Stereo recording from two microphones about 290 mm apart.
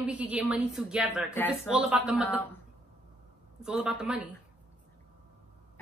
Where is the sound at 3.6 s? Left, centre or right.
Centre.